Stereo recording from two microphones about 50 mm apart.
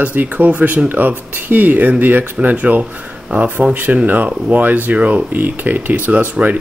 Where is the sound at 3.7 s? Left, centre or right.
Right.